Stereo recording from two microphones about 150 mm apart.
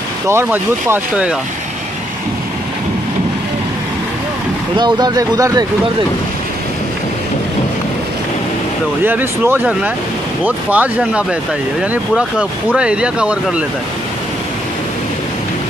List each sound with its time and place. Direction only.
0.3 s speech: 15° right (ahead or behind)
4.7 s speech: 30° right (ahead or behind)
9.0 s speech: 15° right (ahead or behind)